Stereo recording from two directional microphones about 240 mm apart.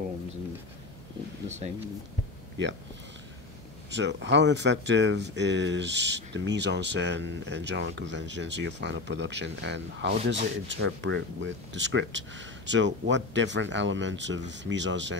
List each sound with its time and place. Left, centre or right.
2.6 s speech: right
3.9 s speech: right